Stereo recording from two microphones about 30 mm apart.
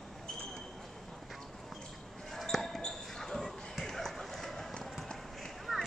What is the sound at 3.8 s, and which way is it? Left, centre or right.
Clip-clop, centre.